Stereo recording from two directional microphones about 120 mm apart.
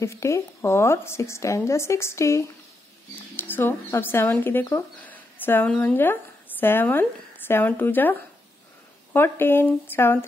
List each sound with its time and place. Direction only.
0.0 s a woman's voice: 25° left (ahead or behind)